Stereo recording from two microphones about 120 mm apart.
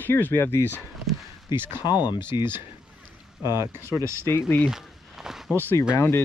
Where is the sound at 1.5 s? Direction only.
20° right (ahead or behind).